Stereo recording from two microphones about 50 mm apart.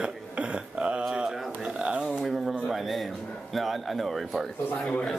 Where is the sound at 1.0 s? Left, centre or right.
Centre.